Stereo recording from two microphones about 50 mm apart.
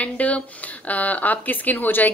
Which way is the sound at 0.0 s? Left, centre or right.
Left.